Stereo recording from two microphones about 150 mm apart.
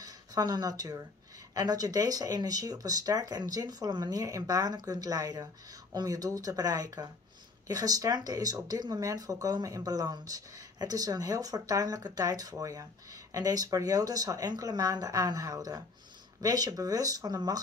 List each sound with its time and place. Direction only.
0.0 s speech: 25° right (ahead or behind)